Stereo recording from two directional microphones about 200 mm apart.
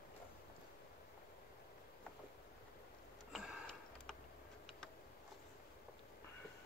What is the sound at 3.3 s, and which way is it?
Sniff, centre (ahead or behind).